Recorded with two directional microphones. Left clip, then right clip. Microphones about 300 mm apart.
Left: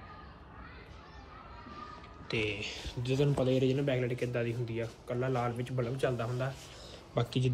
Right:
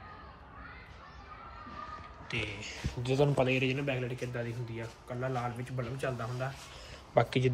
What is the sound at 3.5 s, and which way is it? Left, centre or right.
Speech, centre.